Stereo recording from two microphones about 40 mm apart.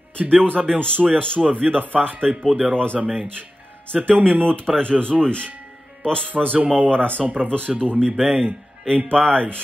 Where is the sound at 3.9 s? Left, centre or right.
Right.